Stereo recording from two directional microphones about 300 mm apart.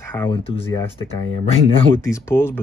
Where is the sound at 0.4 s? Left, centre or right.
Centre.